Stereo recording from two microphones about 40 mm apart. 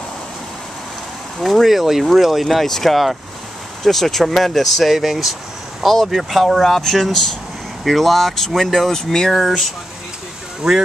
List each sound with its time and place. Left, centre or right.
1.4 s speech: centre
7.8 s speech: centre
10.6 s speech: centre